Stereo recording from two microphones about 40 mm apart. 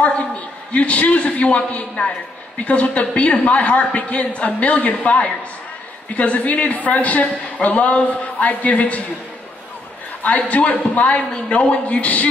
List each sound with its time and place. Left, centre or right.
0.7 s a woman's voice: left
10.2 s a woman's voice: left